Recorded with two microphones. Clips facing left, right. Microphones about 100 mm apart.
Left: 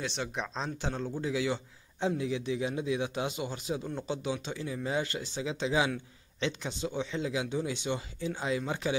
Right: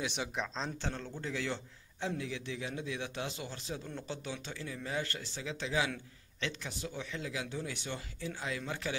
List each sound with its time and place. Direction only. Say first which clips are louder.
0.0 s speech: left 2 dB; 10° right (ahead or behind)
0.3 s speech: left 2 dB; centre (ahead or behind)
0.7 s a man's voice: left 6 dB; 15° left (ahead or behind)
2.0 s a man's voice: left 7 dB; 20° left (ahead or behind)